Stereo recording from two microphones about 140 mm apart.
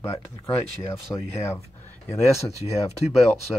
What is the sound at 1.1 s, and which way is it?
Speech, 15° left (ahead or behind).